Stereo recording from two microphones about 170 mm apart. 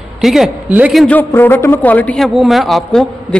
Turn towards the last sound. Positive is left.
turn(degrees=0)  # may be behind; listen again after turning